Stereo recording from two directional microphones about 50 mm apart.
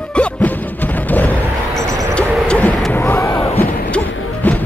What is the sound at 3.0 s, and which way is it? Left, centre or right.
Slam, left.